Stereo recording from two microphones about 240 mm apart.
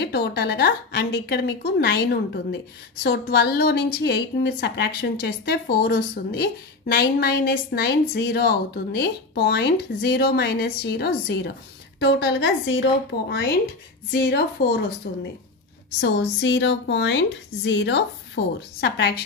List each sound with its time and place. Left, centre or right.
0.0 s a woman's voice: left